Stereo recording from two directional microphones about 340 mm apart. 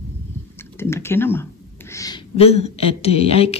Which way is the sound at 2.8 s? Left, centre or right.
Centre.